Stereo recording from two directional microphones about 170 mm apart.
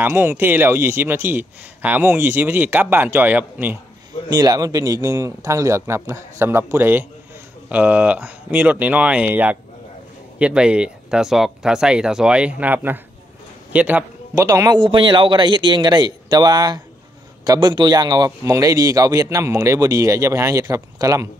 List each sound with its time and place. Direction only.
0.0 s a man's voice: 10° right (ahead or behind)
4.3 s a man's voice: 20° right (ahead or behind)
14.4 s a man's voice: 20° right (ahead or behind)